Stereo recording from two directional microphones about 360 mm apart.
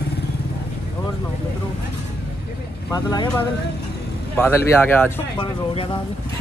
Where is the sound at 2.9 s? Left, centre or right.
Centre.